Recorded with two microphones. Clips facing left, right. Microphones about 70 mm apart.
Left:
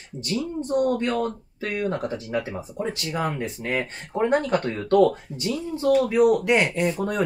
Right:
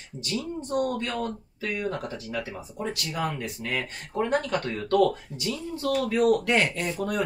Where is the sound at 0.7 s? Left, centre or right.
Left.